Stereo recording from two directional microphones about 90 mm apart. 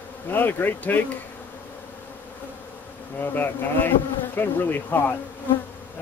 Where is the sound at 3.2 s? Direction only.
20° left (ahead or behind).